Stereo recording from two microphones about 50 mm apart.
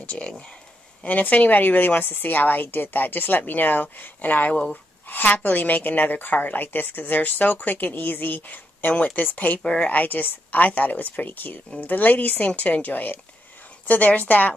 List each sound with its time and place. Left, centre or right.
0.0 s a woman's voice: left
9.6 s speech: centre
9.8 s a woman's voice: left